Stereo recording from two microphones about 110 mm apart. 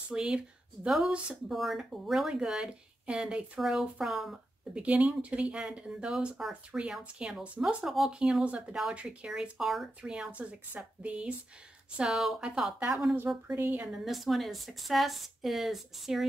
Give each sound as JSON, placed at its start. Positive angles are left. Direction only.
{"t": 0.1, "sound": "speech", "side_deg": -5}
{"t": 13.6, "sound": "speech", "side_deg": -15}
{"t": 13.9, "sound": "speech", "side_deg": 0}